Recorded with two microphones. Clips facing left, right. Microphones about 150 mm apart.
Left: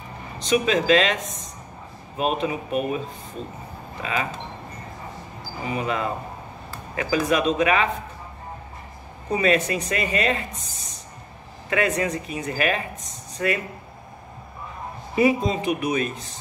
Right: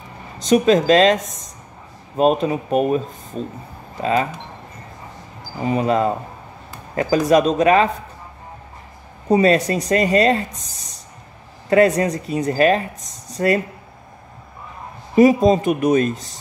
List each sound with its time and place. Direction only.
0.4 s speech: 40° right (ahead or behind)
4.0 s speech: 40° right (ahead or behind)
5.7 s speech: 35° right (ahead or behind)
9.3 s speech: 35° right (ahead or behind)
15.1 s speech: 40° right (ahead or behind)